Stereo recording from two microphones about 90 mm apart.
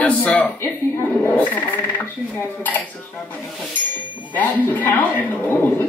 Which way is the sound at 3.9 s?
20° left (ahead or behind).